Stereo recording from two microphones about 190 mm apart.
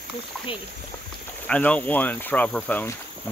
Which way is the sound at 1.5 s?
5° left (ahead or behind).